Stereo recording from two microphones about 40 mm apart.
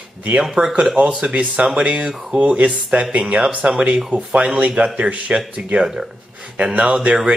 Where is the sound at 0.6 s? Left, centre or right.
Right.